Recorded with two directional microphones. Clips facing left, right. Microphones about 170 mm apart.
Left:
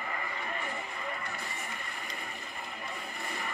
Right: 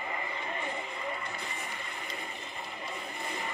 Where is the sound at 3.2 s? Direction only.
20° right (ahead or behind).